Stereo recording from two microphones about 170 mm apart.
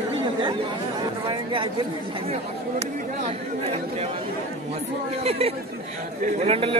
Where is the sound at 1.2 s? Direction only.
30° right (ahead or behind).